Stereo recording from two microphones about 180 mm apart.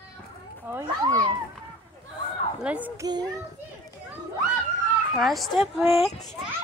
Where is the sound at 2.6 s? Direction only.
10° right (ahead or behind).